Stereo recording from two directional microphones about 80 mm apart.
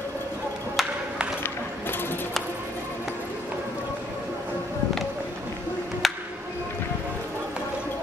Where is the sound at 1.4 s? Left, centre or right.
Left.